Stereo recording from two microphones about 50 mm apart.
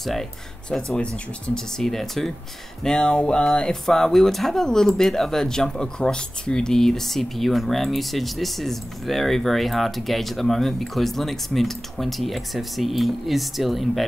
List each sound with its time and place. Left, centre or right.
0.0 s speech: centre
0.9 s music: left
1.8 s speech: centre
2.8 s music: centre
3.5 s speech: centre